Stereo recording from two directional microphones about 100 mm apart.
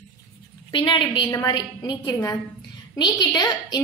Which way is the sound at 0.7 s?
55° left (ahead or behind).